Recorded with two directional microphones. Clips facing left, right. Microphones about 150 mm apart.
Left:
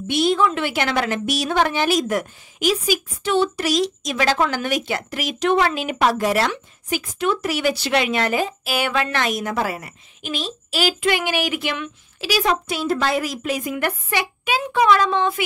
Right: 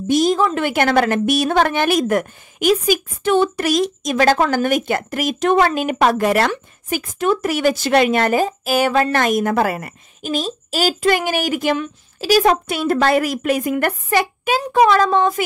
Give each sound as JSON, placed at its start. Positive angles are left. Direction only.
{"t": 0.1, "sound": "a woman's voice", "side_deg": -40}